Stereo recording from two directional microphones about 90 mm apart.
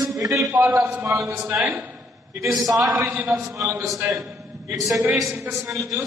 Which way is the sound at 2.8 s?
35° right (ahead or behind).